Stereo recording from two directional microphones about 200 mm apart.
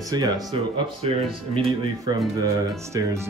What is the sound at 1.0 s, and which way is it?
Speech, 30° right (ahead or behind).